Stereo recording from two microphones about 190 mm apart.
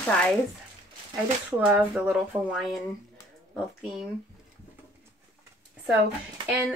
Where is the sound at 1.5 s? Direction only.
10° right (ahead or behind).